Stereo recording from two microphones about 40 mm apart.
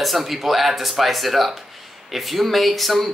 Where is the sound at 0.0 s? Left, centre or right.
Centre.